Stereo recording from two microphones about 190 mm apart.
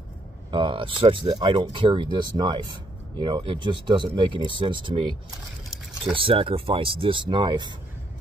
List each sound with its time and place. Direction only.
0.5 s speech: 25° right (ahead or behind)
6.1 s speech: 30° right (ahead or behind)